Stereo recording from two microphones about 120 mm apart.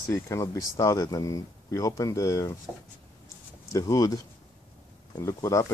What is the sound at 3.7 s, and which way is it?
Speech, 30° left (ahead or behind).